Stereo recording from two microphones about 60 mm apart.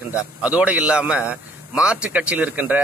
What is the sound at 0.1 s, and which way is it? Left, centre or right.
A man's voice, right.